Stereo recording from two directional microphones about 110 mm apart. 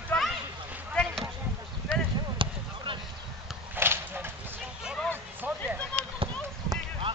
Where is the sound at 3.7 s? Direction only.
20° right (ahead or behind).